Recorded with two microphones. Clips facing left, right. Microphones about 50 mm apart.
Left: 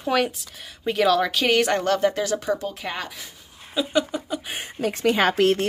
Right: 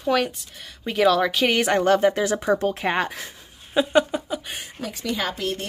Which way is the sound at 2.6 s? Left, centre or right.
Right.